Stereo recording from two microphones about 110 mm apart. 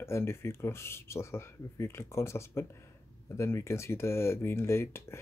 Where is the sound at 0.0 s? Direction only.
25° left (ahead or behind).